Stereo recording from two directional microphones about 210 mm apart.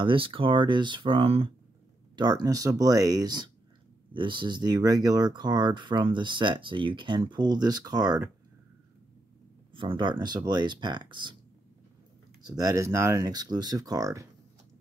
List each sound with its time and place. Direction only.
0.0 s speech: 25° right (ahead or behind)
9.8 s speech: 25° right (ahead or behind)
12.4 s speech: 15° right (ahead or behind)